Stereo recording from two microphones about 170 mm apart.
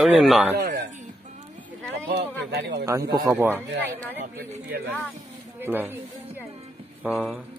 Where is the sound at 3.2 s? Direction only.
15° right (ahead or behind).